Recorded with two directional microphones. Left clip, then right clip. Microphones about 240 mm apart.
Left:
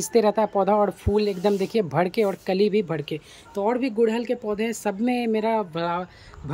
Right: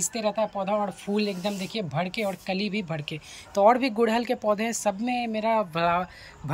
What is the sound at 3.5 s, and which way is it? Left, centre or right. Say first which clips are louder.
Speech: right 3 dB; centre.